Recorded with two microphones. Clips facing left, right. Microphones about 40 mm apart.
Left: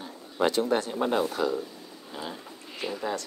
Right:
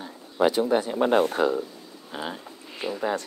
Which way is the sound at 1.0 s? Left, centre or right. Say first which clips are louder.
Right 6 dB; right.